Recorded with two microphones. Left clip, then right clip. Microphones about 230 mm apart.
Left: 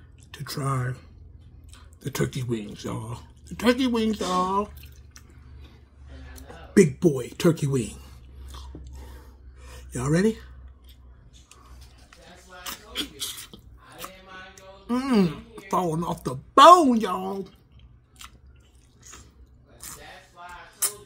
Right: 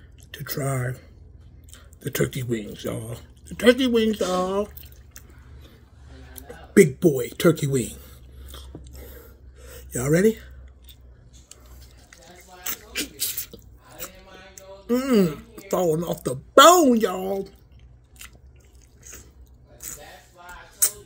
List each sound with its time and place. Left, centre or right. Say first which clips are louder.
0.3 s speech: right 1 dB; centre
6.7 s a sound: right 3 dB; centre
12.6 s drip: right 2 dB; centre
14.9 s speech: right 4 dB; centre